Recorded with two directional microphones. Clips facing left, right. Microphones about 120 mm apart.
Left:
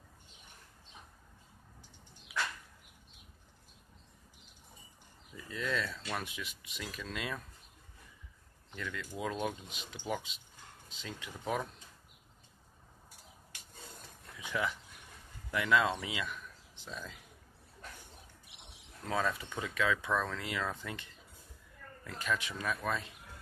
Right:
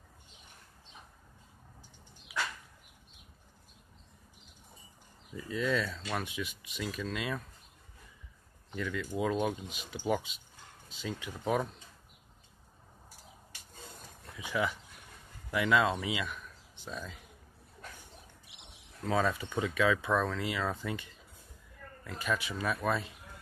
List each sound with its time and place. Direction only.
5.5 s speech: centre (ahead or behind)
8.7 s speech: 5° right (ahead or behind)
14.4 s speech: 5° right (ahead or behind)
19.2 s speech: 25° right (ahead or behind)
19.6 s speech: 5° right (ahead or behind)
22.0 s speech: 5° right (ahead or behind)